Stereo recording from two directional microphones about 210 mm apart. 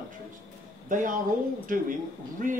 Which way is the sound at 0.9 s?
40° right (ahead or behind).